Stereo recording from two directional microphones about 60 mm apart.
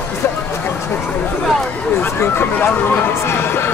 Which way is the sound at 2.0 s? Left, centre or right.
Left.